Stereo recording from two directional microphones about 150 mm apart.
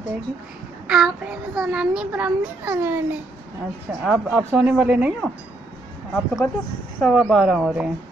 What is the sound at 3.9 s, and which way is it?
Speech, centre (ahead or behind).